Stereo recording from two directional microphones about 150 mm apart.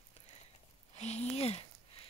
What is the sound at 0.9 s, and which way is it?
Speech, 45° left (ahead or behind).